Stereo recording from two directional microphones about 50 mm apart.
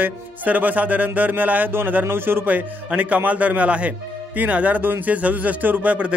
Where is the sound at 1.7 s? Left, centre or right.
Right.